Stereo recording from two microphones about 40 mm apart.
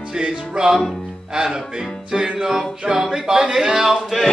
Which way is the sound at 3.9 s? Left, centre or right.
Centre.